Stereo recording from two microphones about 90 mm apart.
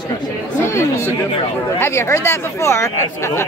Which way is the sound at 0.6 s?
30° left (ahead or behind).